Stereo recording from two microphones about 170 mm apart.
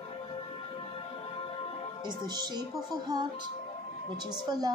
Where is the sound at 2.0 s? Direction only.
25° right (ahead or behind).